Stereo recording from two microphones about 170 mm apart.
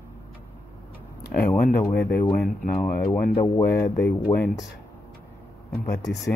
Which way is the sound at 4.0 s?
10° left (ahead or behind).